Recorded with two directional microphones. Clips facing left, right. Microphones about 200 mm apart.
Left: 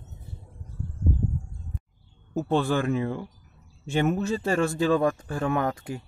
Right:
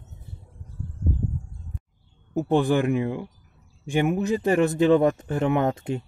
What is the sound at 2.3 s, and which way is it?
A man's voice, 15° right (ahead or behind).